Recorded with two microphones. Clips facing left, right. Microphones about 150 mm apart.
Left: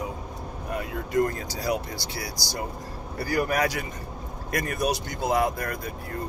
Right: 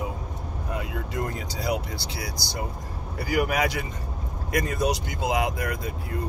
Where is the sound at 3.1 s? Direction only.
15° right (ahead or behind).